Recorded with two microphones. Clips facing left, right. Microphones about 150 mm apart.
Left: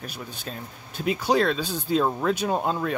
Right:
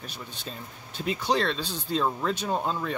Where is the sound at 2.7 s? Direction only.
50° left (ahead or behind).